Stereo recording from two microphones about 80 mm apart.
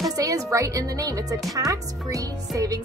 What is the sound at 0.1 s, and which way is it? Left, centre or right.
Speech, right.